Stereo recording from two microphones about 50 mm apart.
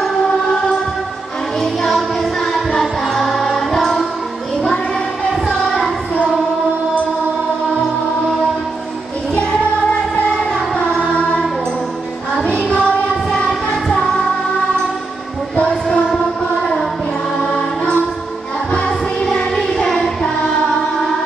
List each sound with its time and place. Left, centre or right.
1.6 s music: centre
5.5 s child singing: centre
11.0 s music: centre
12.6 s child singing: centre
13.8 s music: centre
15.5 s music: centre
17.4 s music: centre
19.8 s child singing: centre